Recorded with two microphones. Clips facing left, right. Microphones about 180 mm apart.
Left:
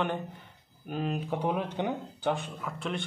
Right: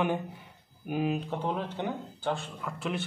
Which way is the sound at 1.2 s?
10° left (ahead or behind).